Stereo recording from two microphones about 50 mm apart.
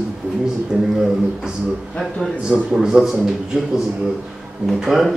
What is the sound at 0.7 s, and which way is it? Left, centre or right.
Speech, centre.